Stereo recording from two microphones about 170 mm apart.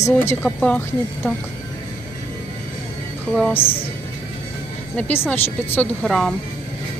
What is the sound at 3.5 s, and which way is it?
Music, 30° left (ahead or behind).